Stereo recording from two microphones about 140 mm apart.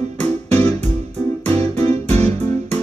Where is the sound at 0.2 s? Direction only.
50° right (ahead or behind).